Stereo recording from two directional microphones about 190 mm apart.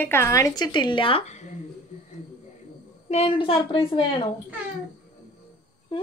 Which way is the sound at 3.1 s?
30° left (ahead or behind).